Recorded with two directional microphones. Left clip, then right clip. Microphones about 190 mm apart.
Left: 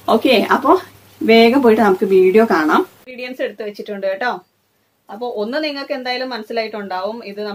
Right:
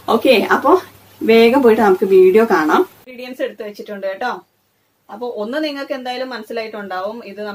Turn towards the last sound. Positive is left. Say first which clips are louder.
# left 1 dB
turn(degrees=30)  # may be behind; listen again after turning